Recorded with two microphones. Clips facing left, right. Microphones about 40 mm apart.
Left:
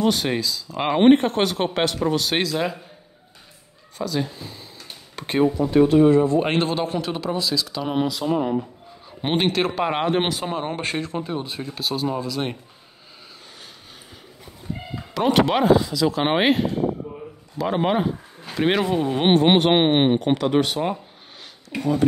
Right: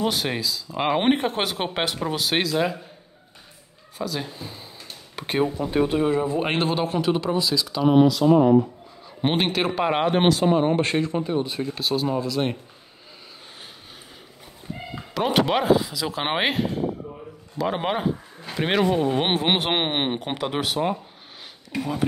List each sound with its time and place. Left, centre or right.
0.0 s speech: centre
4.0 s speech: centre
15.1 s speech: centre
17.0 s a sound: centre
17.6 s speech: centre